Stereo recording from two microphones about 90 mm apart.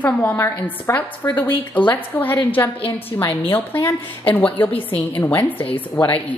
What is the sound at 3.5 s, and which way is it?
A woman's voice, 20° left (ahead or behind).